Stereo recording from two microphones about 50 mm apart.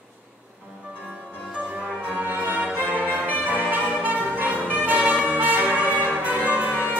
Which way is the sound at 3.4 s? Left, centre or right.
Right.